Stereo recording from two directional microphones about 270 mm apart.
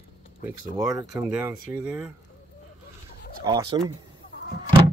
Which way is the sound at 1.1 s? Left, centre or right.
Centre.